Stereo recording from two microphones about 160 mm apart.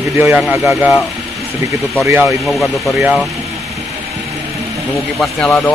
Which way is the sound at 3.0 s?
Centre (ahead or behind).